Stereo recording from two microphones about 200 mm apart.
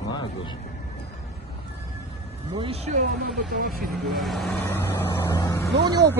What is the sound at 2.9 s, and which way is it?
Speech, 45° right (ahead or behind).